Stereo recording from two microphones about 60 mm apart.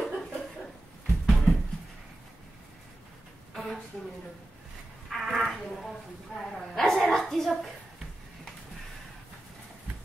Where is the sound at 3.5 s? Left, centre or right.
Centre.